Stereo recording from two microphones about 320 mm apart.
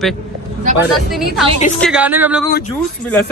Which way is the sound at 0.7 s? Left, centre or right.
Right.